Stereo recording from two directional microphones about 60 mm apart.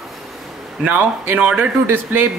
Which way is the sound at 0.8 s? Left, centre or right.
Right.